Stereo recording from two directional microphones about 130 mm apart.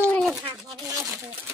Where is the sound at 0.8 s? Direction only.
25° right (ahead or behind).